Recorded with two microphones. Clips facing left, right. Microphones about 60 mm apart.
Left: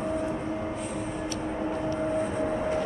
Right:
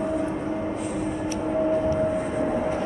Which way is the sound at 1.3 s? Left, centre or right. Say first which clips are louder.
Right 10 dB; centre.